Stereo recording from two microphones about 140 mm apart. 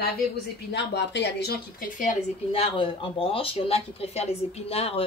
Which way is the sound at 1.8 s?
70° left (ahead or behind).